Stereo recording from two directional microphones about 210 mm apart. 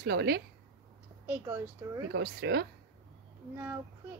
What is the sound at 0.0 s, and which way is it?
Speech, 50° right (ahead or behind).